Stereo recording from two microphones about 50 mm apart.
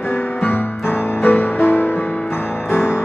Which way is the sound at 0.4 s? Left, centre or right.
Left.